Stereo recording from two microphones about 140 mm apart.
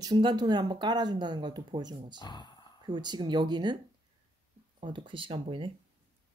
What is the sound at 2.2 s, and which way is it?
Speech, 30° left (ahead or behind).